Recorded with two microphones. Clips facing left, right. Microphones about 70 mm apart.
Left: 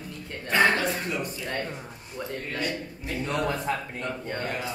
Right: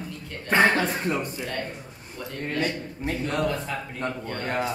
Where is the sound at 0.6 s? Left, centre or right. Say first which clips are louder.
Right 1 dB; right.